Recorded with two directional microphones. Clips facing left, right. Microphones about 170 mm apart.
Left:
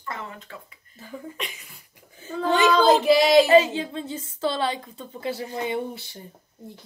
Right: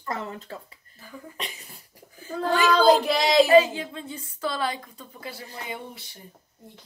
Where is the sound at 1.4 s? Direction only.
35° right (ahead or behind).